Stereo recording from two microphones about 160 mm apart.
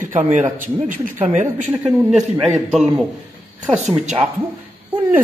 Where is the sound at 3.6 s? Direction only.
5° right (ahead or behind).